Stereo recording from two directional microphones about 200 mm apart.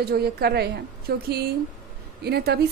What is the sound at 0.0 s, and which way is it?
A woman's voice, 50° right (ahead or behind).